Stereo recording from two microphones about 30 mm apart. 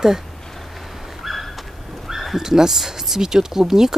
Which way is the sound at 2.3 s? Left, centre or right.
Centre.